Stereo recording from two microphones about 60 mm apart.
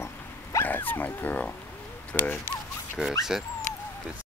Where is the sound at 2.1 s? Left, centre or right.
Left.